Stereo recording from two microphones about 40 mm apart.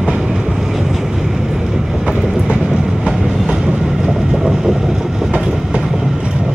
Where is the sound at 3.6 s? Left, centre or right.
Right.